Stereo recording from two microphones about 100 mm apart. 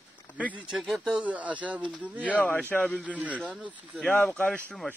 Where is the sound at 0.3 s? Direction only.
15° left (ahead or behind).